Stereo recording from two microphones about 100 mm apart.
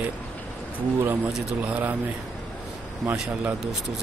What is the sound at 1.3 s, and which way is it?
Speech, 15° right (ahead or behind).